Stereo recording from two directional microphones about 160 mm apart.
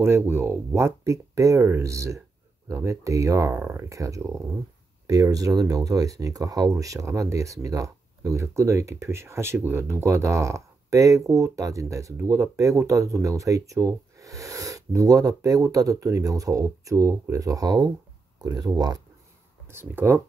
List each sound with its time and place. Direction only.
0.0 s speech: 15° right (ahead or behind)